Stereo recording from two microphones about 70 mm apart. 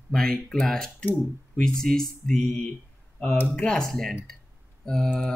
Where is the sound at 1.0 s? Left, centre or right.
Left.